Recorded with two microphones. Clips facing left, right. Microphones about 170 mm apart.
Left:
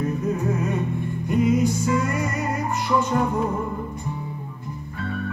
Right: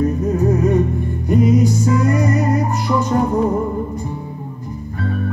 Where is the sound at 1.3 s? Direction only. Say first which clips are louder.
Right 5 dB; 40° right (ahead or behind).